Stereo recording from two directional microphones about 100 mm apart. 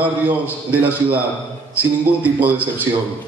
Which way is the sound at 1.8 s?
15° right (ahead or behind).